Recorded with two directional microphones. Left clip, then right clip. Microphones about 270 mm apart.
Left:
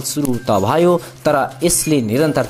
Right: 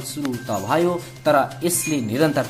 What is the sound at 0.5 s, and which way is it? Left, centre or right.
Speech, left.